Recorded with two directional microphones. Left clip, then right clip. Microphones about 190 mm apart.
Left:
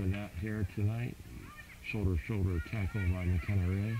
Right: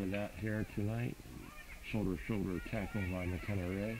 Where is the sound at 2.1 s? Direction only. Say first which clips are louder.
Left 1 dB; centre (ahead or behind).